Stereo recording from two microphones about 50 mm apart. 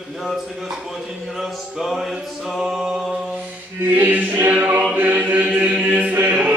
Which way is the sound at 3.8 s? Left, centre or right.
Right.